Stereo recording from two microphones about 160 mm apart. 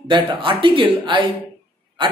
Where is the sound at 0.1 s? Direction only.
30° right (ahead or behind).